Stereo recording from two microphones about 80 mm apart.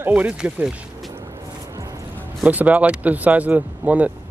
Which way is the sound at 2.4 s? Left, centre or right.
Centre.